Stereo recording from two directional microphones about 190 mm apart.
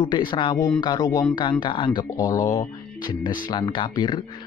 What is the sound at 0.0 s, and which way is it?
Speech, 25° left (ahead or behind).